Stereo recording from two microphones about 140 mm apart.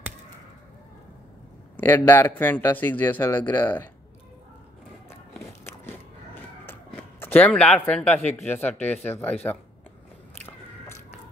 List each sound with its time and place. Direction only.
1.8 s speech: 15° left (ahead or behind)
5.6 s biting: 15° left (ahead or behind)
6.6 s a sound: 15° left (ahead or behind)
8.4 s speech: 15° left (ahead or behind)